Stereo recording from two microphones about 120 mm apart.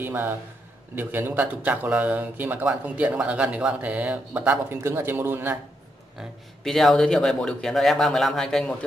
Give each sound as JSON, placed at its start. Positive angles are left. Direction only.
{"t": 0.0, "sound": "a man's voice", "side_deg": -20}
{"t": 6.6, "sound": "speech", "side_deg": 0}